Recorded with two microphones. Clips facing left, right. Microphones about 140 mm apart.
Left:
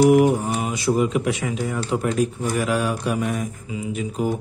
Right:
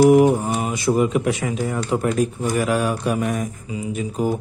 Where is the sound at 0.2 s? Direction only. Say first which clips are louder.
Right 2 dB; 40° right (ahead or behind).